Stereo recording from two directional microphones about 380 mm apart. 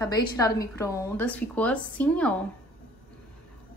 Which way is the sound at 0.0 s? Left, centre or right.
Centre.